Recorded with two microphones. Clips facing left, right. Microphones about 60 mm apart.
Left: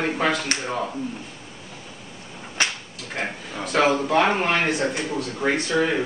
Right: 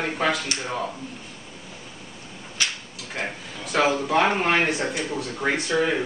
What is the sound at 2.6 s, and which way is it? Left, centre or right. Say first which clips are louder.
Whip: left 3 dB; left.